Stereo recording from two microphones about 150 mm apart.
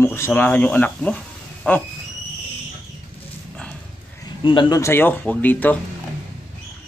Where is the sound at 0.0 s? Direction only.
15° left (ahead or behind).